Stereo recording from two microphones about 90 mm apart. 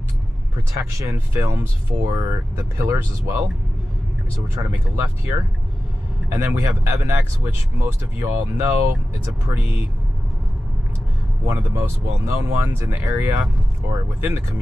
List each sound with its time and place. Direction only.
0.7 s speech: 40° right (ahead or behind)
1.1 s speech: 25° right (ahead or behind)
6.3 s speech: 25° right (ahead or behind)
11.4 s speech: 30° right (ahead or behind)